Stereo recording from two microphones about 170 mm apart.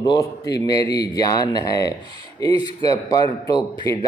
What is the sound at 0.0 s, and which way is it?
A man's voice, 20° left (ahead or behind).